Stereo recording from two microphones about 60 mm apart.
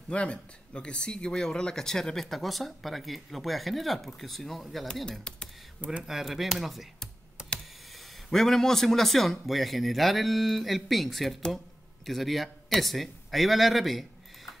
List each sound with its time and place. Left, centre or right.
0.1 s speech: centre
6.0 s speech: centre
7.4 s computer keyboard: centre
8.3 s a man's voice: centre